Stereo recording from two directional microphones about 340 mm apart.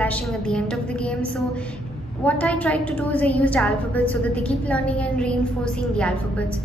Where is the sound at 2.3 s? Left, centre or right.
Centre.